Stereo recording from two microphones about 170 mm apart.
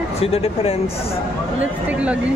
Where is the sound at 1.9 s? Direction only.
5° right (ahead or behind).